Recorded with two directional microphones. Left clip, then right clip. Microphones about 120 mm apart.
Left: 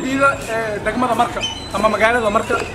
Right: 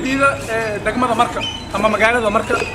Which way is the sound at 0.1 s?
Centre (ahead or behind).